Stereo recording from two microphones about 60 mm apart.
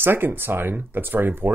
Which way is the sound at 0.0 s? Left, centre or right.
Right.